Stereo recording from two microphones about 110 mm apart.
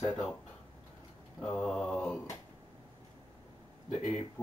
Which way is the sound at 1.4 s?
5° left (ahead or behind).